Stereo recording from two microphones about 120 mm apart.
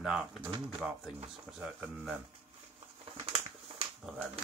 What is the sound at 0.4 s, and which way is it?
Speech, 40° right (ahead or behind).